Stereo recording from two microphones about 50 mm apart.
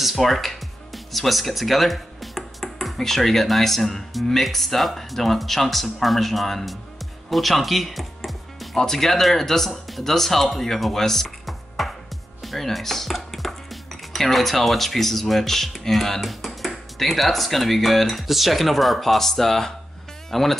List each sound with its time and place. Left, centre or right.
0.0 s speech: centre
7.2 s music: centre
8.7 s speech: centre
11.2 s music: centre
12.4 s speech: centre